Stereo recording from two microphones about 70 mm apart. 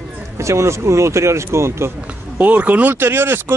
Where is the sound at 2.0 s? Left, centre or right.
Centre; by 3.5 s right.